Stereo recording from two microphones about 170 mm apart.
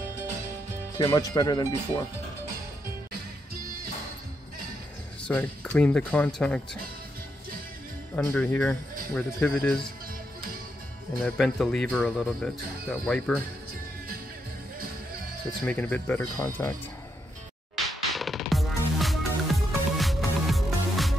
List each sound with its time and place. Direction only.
0.9 s speech: 20° left (ahead or behind)
5.2 s speech: 5° left (ahead or behind)
8.2 s speech: 15° left (ahead or behind)
11.2 s speech: 5° left (ahead or behind)
15.6 s speech: 10° left (ahead or behind)
17.7 s music: centre (ahead or behind)